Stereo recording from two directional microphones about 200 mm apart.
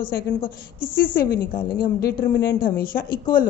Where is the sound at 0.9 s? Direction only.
45° left (ahead or behind).